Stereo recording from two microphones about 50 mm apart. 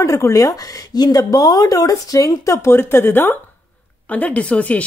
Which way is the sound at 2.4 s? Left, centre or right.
Left.